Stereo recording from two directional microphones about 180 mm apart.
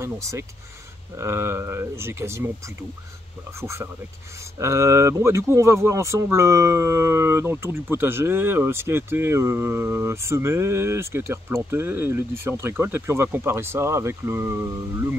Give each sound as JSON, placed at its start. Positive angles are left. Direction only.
{"t": 0.0, "sound": "speech", "side_deg": -15}
{"t": 3.6, "sound": "speech", "side_deg": -15}